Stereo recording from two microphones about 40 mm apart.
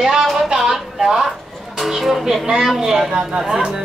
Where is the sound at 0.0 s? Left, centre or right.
Centre.